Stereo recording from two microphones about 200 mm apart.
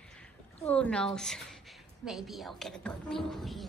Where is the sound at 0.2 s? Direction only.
5° left (ahead or behind).